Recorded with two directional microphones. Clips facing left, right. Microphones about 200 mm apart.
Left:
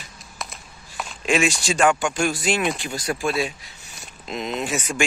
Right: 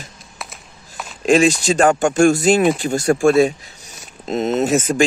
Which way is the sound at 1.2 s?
40° right (ahead or behind).